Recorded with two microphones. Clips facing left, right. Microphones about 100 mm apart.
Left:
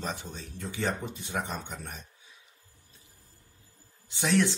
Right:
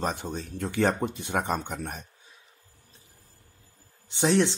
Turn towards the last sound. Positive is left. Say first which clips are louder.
# right 3 dB
turn(degrees=-25)  # may be behind; listen again after turning